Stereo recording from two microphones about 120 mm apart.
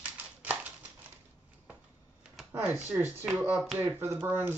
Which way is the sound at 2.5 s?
15° right (ahead or behind).